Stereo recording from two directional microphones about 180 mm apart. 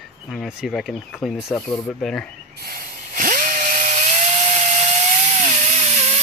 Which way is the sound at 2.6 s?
50° right (ahead or behind).